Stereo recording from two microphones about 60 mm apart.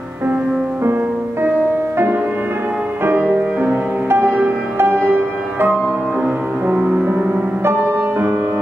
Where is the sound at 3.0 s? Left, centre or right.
Right.